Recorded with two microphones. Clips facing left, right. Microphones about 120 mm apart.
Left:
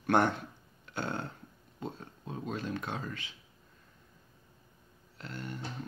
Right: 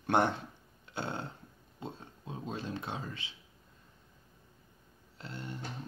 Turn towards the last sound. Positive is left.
turn(degrees=-25)  # may be behind; listen again after turning